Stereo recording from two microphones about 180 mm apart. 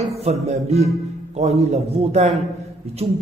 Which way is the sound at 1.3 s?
35° right (ahead or behind).